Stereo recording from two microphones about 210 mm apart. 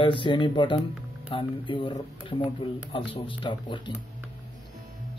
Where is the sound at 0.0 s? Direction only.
25° left (ahead or behind).